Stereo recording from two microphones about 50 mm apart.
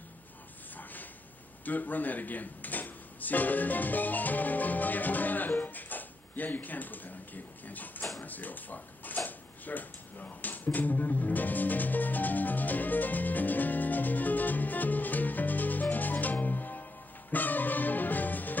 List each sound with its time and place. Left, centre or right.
1.6 s speech: left
8.2 s a sound: left
17.3 s music: left